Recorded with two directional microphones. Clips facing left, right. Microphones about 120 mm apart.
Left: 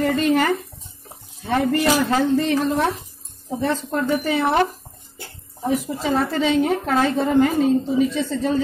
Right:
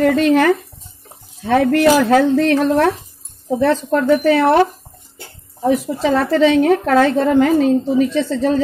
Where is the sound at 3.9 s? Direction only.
80° right.